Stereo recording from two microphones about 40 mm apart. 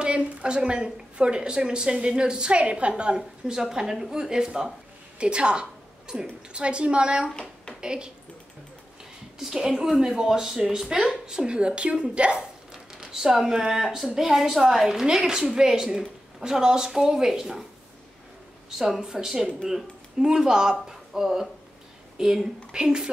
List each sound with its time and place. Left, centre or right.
0.0 s a woman's voice: right
3.4 s a woman's voice: centre
5.2 s a woman's voice: right
9.4 s a woman's voice: centre
12.7 s a woman's voice: centre
18.7 s a woman's voice: centre